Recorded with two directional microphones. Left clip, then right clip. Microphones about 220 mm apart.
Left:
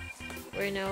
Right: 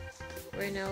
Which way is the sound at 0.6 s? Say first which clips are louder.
Left 3 dB; 15° right (ahead or behind).